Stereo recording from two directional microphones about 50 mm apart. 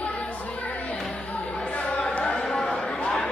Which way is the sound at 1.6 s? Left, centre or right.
Left.